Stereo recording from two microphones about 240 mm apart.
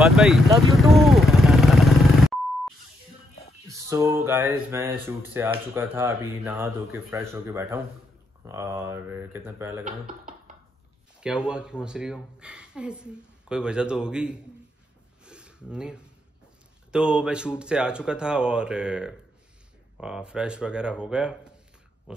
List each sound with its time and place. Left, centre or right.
0.0 s speech: centre
0.6 s vehicle: centre
3.7 s speech: centre
9.8 s speech: right
11.1 s speech: centre
15.2 s a sound: centre
16.9 s speech: centre